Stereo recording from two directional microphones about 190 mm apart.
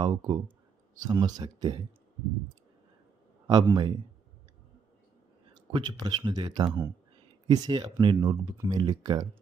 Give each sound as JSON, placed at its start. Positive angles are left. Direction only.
{"t": 0.0, "sound": "speech", "side_deg": -25}
{"t": 3.4, "sound": "speech", "side_deg": -20}
{"t": 5.5, "sound": "speech", "side_deg": -25}